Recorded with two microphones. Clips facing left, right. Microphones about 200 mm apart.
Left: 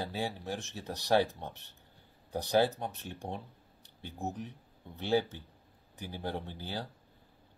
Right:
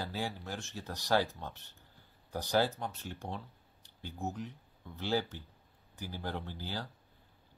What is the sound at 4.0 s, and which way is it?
Speech, 20° left (ahead or behind).